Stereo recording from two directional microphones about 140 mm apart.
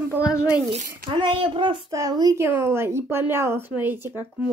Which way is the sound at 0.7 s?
65° right (ahead or behind).